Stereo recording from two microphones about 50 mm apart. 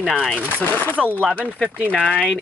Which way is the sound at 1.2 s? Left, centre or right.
Right.